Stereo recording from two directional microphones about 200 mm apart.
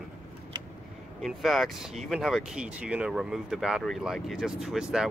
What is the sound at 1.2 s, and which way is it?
Speech, centre (ahead or behind).